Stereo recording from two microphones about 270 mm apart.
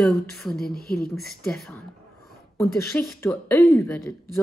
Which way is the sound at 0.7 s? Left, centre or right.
Left.